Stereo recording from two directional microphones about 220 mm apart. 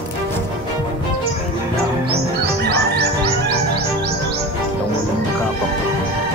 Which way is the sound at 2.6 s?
45° right (ahead or behind).